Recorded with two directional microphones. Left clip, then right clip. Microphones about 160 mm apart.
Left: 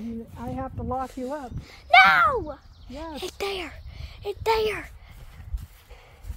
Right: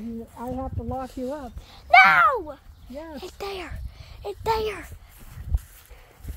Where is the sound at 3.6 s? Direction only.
20° left (ahead or behind).